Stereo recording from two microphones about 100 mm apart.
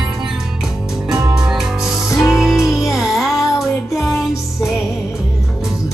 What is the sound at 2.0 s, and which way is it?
Music, 30° left (ahead or behind).